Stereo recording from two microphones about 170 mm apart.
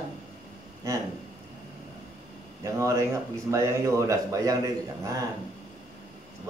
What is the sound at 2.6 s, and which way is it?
A man's voice, 15° right (ahead or behind).